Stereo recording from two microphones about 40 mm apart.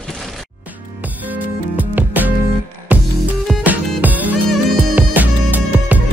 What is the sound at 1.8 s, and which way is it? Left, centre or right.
Music, right.